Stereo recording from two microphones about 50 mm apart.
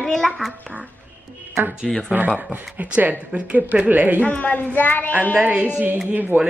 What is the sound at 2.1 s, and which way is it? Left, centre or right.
Speech, right.